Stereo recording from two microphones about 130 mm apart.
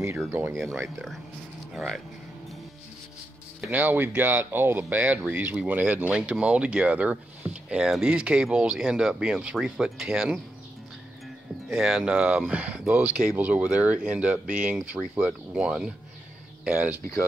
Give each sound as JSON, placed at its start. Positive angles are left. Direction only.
{"t": 0.3, "sound": "speech", "side_deg": -15}
{"t": 1.7, "sound": "speech", "side_deg": -5}
{"t": 3.6, "sound": "speech", "side_deg": -15}
{"t": 11.7, "sound": "speech", "side_deg": -5}